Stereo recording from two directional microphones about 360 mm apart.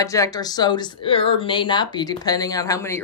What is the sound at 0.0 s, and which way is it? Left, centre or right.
Speech, centre.